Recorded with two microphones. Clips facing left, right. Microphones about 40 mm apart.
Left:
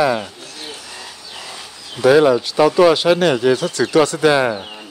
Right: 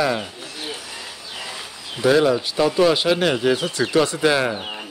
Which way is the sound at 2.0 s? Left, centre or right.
Centre.